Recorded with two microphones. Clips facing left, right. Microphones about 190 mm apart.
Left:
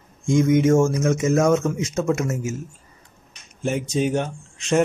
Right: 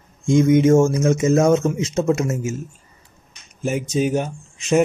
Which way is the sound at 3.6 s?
5° right (ahead or behind).